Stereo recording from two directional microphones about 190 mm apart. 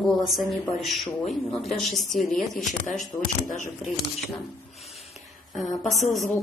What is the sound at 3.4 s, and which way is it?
Speech, 45° left (ahead or behind).